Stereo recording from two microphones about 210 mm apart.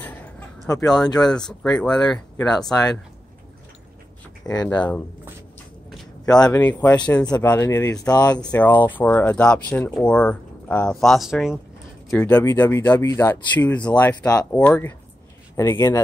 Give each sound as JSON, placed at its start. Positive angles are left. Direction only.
{"t": 0.0, "sound": "a sound", "side_deg": 10}
{"t": 1.0, "sound": "speech", "side_deg": 20}
{"t": 1.8, "sound": "speech", "side_deg": 5}
{"t": 4.5, "sound": "speech", "side_deg": 5}
{"t": 6.3, "sound": "speech", "side_deg": 5}